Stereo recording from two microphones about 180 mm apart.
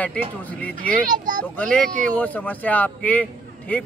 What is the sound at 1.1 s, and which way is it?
Speech, 45° right (ahead or behind).